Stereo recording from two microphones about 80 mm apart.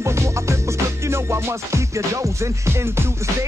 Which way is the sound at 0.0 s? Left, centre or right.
Right.